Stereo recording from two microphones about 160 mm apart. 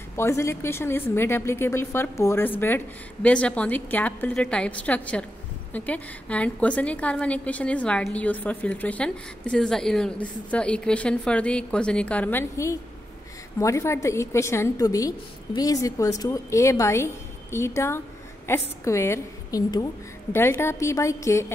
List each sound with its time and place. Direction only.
0.1 s a woman's voice: 15° left (ahead or behind)